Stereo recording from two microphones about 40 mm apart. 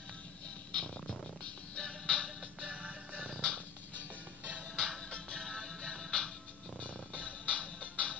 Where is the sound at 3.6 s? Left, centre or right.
Left.